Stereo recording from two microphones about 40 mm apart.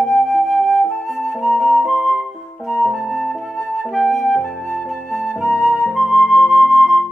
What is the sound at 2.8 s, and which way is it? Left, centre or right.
Flute, centre.